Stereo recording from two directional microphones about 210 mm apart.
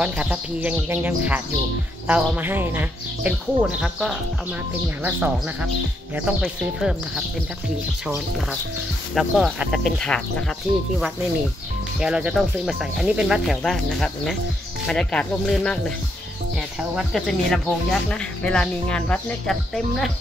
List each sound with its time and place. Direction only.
0.0 s speech: 5° right (ahead or behind)
9.1 s speech: centre (ahead or behind)
12.0 s speech: 5° right (ahead or behind)
16.9 s speech: centre (ahead or behind)